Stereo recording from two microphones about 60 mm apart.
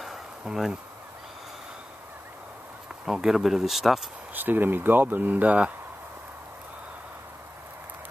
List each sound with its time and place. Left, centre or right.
0.0 s insect: centre
3.1 s speech: centre
4.3 s speech: right